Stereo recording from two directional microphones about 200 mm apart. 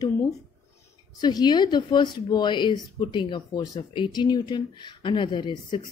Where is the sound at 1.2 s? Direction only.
20° left (ahead or behind).